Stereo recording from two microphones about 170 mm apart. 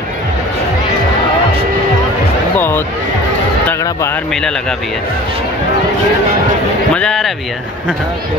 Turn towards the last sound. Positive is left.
turn(degrees=5)  # may be behind; listen again after turning